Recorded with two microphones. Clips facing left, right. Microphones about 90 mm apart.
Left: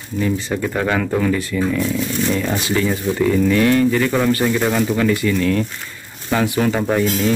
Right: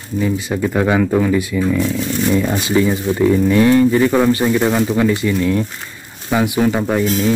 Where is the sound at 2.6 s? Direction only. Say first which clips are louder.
Right 4 dB; 20° right (ahead or behind).